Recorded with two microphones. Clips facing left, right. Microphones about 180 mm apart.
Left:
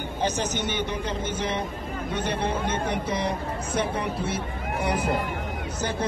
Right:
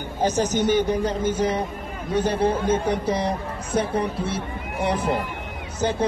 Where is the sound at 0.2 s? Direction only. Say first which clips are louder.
Right 6 dB; 40° right (ahead or behind).